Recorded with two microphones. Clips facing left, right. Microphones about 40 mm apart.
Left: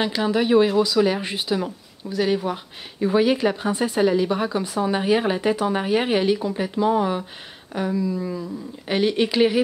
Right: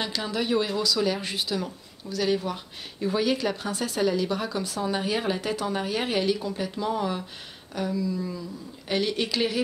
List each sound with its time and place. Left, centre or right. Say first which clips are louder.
0.0 s speech: left 7 dB; left